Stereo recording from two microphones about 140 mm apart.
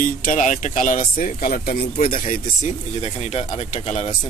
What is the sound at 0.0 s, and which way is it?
Speech, 70° left (ahead or behind).